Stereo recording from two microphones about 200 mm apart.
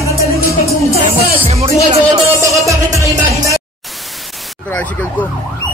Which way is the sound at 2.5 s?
15° right (ahead or behind).